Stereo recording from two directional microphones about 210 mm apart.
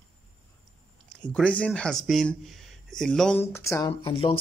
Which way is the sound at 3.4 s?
10° left (ahead or behind).